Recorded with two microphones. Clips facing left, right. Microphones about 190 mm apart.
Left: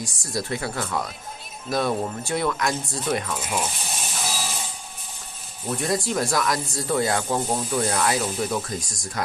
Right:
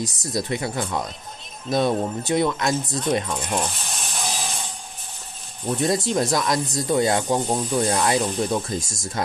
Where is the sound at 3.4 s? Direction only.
5° left (ahead or behind).